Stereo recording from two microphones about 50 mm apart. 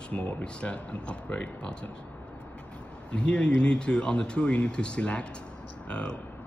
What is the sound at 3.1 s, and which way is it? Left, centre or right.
Speech, left.